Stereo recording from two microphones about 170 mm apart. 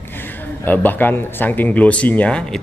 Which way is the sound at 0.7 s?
10° left (ahead or behind).